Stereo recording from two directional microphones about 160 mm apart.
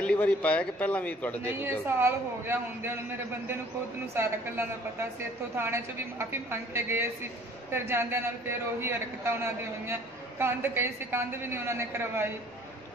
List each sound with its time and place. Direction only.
0.0 s a man's voice: 5° left (ahead or behind)
1.4 s a man's voice: 15° right (ahead or behind)
4.1 s a man's voice: 15° right (ahead or behind)